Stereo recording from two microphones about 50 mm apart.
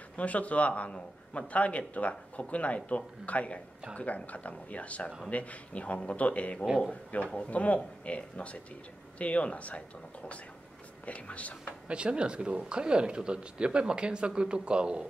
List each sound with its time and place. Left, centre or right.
0.1 s speech: left
11.9 s speech: right